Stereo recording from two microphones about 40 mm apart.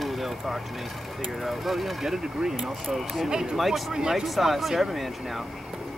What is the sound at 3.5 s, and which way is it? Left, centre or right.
Speech, centre.